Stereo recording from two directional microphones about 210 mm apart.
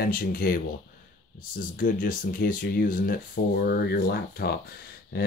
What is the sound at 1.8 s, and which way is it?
Speech, 40° left (ahead or behind).